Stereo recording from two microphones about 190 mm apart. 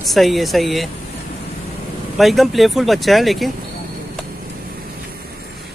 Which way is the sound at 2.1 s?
Centre (ahead or behind).